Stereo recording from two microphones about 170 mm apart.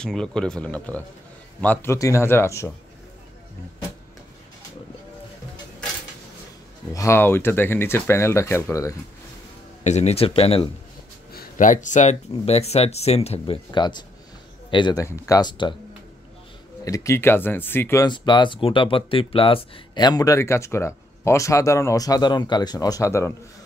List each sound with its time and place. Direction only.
0.0 s speech: 5° left (ahead or behind)
6.9 s speech: 15° left (ahead or behind)
9.8 s speech: 40° left (ahead or behind)
11.3 s speech: 50° left (ahead or behind); by 15.7 s 25° left (ahead or behind)
16.8 s speech: 20° left (ahead or behind)
18.0 s speech: 25° left (ahead or behind)